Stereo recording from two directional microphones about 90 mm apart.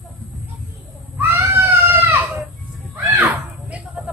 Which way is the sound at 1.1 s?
20° right (ahead or behind).